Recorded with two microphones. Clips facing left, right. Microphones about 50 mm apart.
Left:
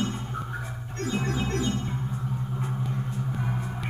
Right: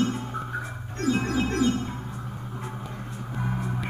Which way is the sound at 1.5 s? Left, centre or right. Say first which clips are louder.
Right 4 dB; right.